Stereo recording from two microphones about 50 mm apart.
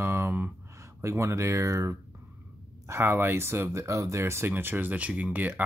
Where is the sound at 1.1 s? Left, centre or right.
Right.